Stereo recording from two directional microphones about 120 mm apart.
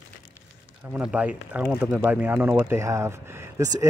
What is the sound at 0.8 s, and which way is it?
Speech, 10° right (ahead or behind).